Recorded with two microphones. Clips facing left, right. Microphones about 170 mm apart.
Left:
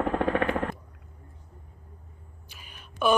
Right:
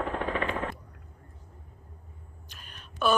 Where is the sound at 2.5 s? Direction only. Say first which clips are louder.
Left 1 dB; 10° left (ahead or behind).